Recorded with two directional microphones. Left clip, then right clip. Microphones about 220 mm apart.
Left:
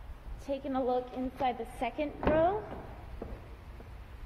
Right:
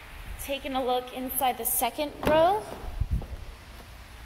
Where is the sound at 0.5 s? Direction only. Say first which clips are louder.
Right 4 dB; centre (ahead or behind).